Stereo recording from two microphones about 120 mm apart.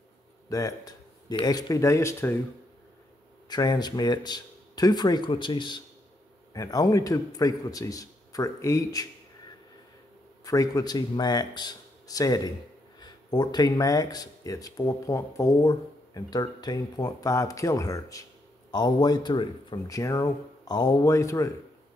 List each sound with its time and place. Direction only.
0.5 s speech: 30° left (ahead or behind)
3.4 s speech: 35° left (ahead or behind)
6.5 s speech: 30° left (ahead or behind)
10.4 s speech: 30° left (ahead or behind)
19.9 s speech: 25° left (ahead or behind)